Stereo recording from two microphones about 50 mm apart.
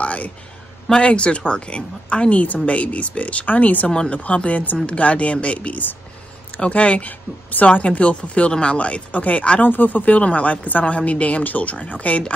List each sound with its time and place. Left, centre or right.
0.0 s a sound: left
0.8 s speech: centre
9.7 s speech: left